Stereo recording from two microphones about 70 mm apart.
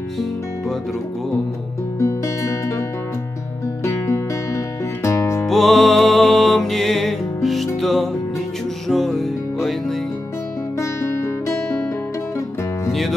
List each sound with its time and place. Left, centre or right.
2.0 s music: left
5.0 s music: left
5.5 s music: centre
10.8 s music: left